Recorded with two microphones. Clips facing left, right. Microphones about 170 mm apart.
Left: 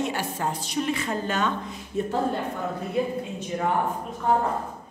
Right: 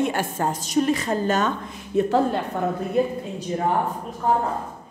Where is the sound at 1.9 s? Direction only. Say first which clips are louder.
Right 7 dB; 70° right (ahead or behind).